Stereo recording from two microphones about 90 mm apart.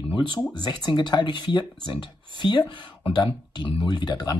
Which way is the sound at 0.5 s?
50° left (ahead or behind).